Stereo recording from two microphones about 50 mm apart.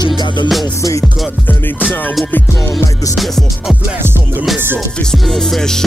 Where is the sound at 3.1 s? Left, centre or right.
Centre.